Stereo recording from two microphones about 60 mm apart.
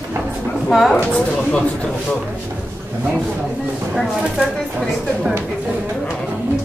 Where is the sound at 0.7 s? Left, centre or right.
Centre.